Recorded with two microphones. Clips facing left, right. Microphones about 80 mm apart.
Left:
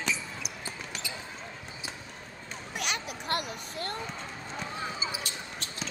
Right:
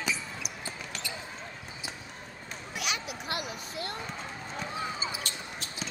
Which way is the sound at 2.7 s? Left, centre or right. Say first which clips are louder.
Even; left.